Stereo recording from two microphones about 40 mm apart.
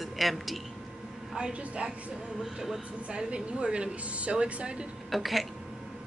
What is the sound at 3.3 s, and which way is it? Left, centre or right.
Speech, right.